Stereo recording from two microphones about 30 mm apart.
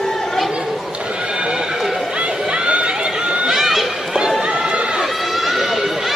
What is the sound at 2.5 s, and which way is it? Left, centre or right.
Run, right.